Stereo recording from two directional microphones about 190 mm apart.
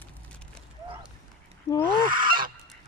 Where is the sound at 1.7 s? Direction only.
20° left (ahead or behind).